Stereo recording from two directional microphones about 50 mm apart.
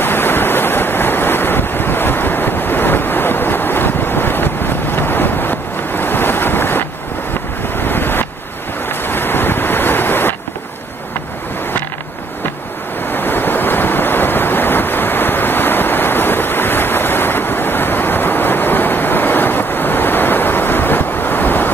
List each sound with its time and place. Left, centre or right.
0.0 s waves: left
7.8 s vehicle: left
13.1 s waves: left